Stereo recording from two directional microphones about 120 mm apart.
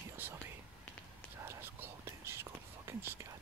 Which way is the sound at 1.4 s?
20° right (ahead or behind).